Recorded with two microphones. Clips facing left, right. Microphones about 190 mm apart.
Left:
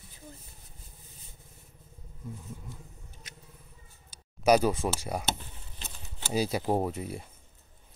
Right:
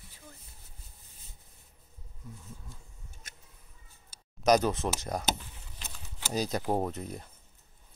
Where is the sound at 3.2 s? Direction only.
50° right (ahead or behind).